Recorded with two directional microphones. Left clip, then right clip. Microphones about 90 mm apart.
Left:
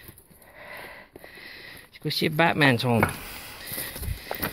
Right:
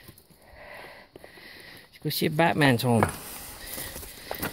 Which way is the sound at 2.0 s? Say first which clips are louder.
Left 1 dB; 50° right (ahead or behind).